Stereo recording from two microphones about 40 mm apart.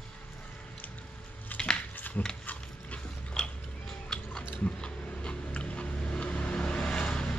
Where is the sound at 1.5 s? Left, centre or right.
Left.